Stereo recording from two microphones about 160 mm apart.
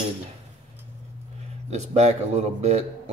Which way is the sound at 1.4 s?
45° right (ahead or behind).